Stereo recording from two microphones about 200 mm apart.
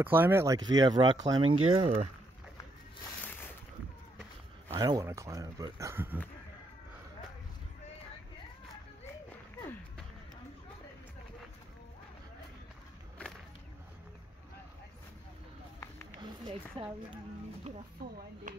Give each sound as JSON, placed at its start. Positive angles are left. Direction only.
{"t": 0.0, "sound": "speech", "side_deg": -10}
{"t": 1.4, "sound": "speech", "side_deg": -90}
{"t": 1.7, "sound": "speech", "side_deg": -30}
{"t": 4.7, "sound": "speech", "side_deg": -20}
{"t": 16.2, "sound": "speech", "side_deg": -25}
{"t": 18.0, "sound": "speech", "side_deg": -50}